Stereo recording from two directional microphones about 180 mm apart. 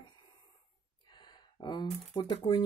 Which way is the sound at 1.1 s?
25° left (ahead or behind).